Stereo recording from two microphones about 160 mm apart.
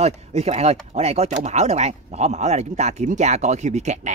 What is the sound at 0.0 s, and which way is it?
Speech, 40° right (ahead or behind).